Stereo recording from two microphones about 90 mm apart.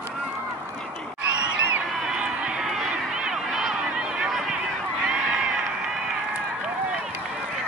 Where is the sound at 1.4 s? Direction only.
10° right (ahead or behind).